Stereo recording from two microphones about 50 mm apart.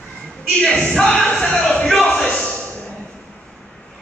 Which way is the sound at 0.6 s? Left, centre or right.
Centre.